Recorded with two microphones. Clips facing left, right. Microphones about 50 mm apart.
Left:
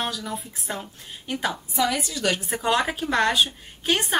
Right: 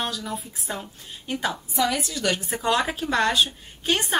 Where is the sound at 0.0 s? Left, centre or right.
Centre.